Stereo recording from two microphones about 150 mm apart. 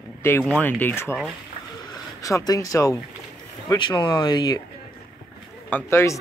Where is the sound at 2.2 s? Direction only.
20° left (ahead or behind).